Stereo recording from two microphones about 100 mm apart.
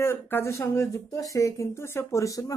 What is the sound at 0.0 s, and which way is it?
A woman's voice, 25° left (ahead or behind).